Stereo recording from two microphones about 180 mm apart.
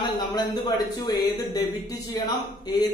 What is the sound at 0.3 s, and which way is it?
Speech, 20° left (ahead or behind).